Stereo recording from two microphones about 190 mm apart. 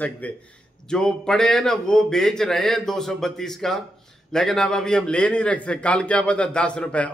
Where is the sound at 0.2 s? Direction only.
10° left (ahead or behind).